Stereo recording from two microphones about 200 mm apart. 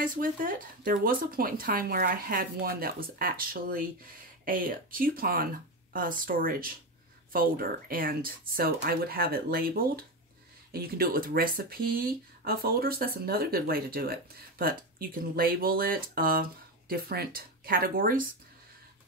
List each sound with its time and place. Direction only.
0.0 s speech: 45° right (ahead or behind)